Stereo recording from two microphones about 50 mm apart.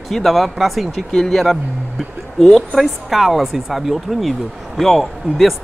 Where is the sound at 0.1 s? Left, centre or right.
Centre.